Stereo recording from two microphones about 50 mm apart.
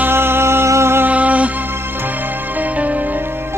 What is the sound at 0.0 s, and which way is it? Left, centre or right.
Music, right.